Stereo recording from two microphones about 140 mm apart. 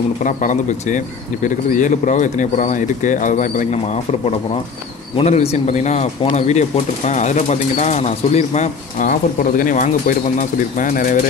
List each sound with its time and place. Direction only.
0.2 s speech: 65° left (ahead or behind)
5.1 s speech: 50° left (ahead or behind); by 11.1 s 75° left (ahead or behind)